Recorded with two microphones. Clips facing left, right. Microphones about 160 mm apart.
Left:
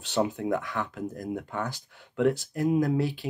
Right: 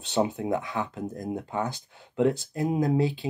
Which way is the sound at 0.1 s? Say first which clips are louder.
Right 1 dB; 20° right (ahead or behind).